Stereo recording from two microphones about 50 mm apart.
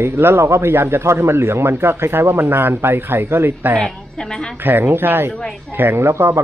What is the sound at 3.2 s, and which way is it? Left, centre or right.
Speech, right.